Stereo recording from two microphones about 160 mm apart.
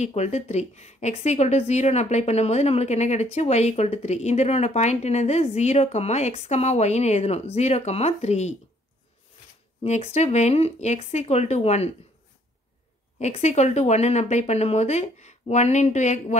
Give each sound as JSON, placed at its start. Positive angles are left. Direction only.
{"t": 0.0, "sound": "a woman's voice", "side_deg": 45}
{"t": 9.8, "sound": "speech", "side_deg": 40}
{"t": 13.2, "sound": "a woman's voice", "side_deg": 45}